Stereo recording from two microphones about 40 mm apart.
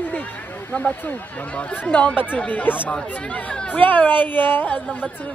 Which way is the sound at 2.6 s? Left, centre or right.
Left.